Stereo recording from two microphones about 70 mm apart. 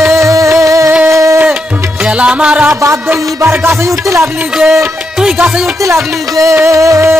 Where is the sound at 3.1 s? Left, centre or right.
Right.